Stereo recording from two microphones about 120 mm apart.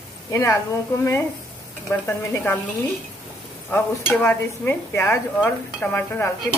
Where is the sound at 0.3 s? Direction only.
30° left (ahead or behind).